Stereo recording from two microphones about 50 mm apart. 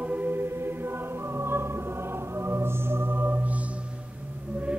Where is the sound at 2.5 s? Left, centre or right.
Right.